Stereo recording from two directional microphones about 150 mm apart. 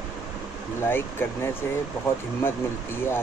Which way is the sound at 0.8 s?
15° left (ahead or behind).